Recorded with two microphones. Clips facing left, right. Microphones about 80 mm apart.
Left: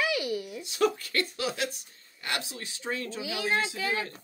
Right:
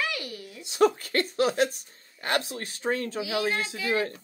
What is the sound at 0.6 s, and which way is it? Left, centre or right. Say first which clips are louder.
Speech: right 6 dB; right.